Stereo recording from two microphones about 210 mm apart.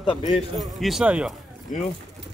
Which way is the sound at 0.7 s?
Centre (ahead or behind).